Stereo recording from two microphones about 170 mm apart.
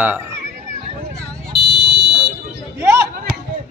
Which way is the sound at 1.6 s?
70° right (ahead or behind).